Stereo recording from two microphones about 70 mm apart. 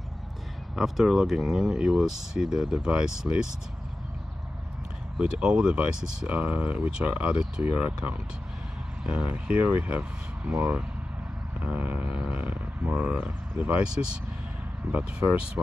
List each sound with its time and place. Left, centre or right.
0.7 s speech: centre
5.2 s speech: centre
7.6 s speech: right
14.9 s speech: right